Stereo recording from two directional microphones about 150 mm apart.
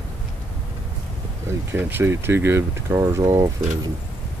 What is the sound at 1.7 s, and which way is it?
Speech, 15° right (ahead or behind).